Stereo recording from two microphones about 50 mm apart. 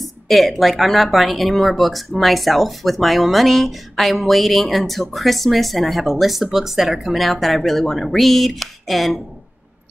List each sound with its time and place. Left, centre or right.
0.0 s speech: centre